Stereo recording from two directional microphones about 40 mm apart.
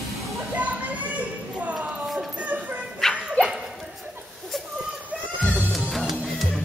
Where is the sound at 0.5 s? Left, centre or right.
Right.